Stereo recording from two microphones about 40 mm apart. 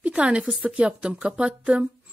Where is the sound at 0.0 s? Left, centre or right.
Right.